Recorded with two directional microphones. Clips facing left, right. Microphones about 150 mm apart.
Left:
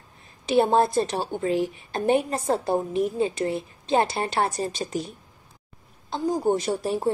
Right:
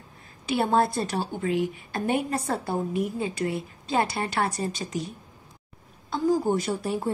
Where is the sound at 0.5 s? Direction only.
25° left (ahead or behind).